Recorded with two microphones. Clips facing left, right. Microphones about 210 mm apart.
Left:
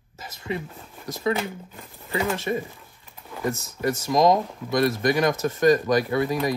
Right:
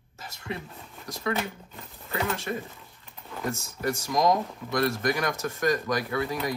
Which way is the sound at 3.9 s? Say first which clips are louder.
Left 5 dB; 20° left (ahead or behind).